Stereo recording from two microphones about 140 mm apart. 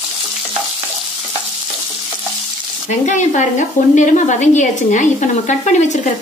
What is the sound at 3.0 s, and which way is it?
Speech, 60° left (ahead or behind).